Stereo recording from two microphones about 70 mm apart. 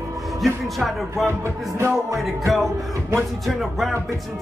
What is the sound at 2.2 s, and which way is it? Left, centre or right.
Music, centre.